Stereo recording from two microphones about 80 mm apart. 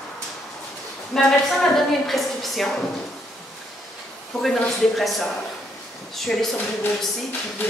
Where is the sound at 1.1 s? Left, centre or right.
Centre.